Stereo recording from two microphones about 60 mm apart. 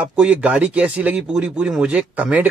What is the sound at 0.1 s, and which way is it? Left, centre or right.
Speech, centre.